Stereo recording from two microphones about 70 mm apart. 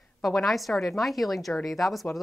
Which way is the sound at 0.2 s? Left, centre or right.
Centre.